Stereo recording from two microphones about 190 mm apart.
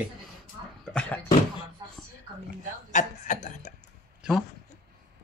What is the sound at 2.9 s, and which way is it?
Speech, 40° left (ahead or behind).